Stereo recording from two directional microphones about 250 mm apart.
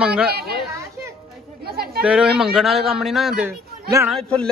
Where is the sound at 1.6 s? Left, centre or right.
Right.